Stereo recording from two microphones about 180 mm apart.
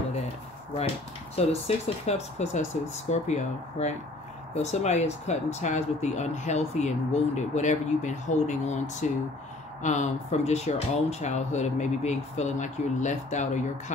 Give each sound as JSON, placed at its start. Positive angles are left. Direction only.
{"t": 1.4, "sound": "speech", "side_deg": 35}